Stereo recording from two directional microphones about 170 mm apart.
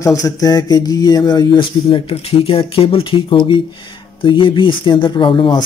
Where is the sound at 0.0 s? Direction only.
20° left (ahead or behind).